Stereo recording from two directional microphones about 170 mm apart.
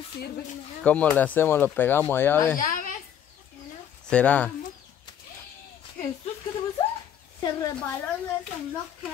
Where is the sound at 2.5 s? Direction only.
55° left (ahead or behind).